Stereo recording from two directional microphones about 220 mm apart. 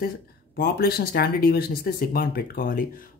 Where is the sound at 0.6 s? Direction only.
45° left (ahead or behind).